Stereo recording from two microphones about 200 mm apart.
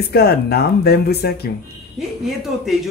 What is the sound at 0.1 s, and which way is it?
Speech, 50° left (ahead or behind).